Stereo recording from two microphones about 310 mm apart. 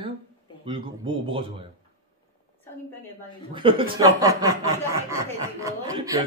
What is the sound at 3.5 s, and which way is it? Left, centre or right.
Speech, centre.